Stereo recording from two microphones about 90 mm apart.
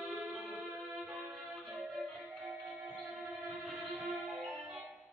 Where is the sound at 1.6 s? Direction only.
20° right (ahead or behind).